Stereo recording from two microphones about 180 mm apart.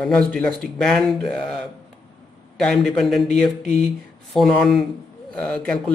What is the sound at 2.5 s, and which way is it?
Speech, 5° left (ahead or behind).